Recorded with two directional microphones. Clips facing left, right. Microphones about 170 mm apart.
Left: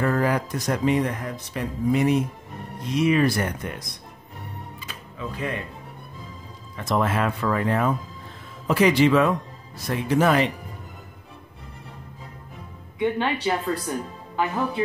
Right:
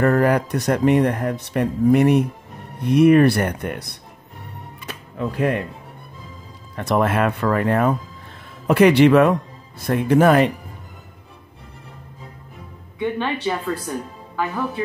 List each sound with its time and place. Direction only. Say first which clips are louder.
0.0 s speech: right 6 dB; 60° right (ahead or behind)
4.7 s music: right 7 dB; 60° right (ahead or behind)
6.7 s speech: right 4 dB; 65° right (ahead or behind)
13.0 s speech: right 1 dB; 15° left (ahead or behind)